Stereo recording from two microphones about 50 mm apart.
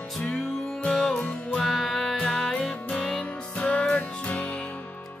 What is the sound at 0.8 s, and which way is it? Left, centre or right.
Music, centre.